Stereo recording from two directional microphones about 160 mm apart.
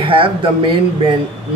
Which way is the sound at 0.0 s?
35° right (ahead or behind).